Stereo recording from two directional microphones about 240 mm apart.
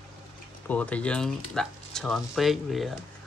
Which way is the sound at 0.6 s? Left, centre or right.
Centre.